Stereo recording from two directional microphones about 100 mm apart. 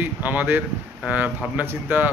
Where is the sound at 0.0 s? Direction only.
15° right (ahead or behind).